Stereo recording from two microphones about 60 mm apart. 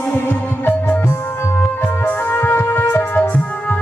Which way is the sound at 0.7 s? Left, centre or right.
Left.